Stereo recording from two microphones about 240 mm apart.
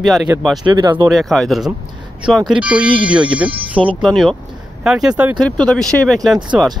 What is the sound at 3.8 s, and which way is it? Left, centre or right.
Speech, right.